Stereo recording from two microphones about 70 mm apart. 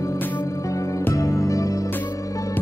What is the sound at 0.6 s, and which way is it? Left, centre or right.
Music, left.